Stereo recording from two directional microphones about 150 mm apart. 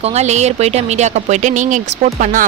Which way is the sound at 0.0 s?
50° right (ahead or behind).